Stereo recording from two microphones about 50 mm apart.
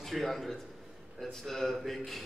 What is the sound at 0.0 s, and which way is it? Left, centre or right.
A man's voice, centre.